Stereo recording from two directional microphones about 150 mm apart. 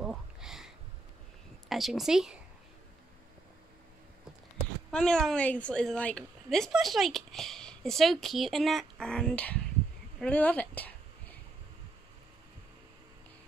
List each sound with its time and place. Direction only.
0.0 s a sound: 5° right (ahead or behind)
1.7 s a woman's voice: centre (ahead or behind)
4.9 s a woman's voice: 5° left (ahead or behind)